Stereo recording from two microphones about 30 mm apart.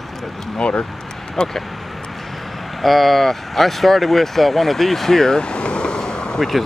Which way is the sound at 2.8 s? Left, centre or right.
Centre.